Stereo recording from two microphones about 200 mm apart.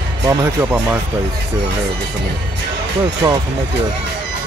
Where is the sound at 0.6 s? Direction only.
10° right (ahead or behind).